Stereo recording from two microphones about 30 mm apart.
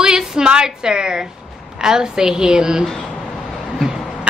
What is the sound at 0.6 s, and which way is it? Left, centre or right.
A woman's voice, right.